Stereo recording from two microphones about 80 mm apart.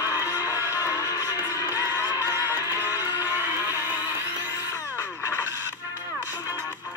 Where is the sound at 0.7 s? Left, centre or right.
Left.